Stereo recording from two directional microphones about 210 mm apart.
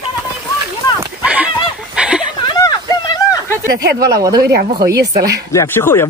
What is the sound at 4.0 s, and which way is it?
Speech, 15° right (ahead or behind).